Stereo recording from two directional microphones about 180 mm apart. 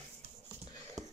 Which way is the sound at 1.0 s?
Centre (ahead or behind).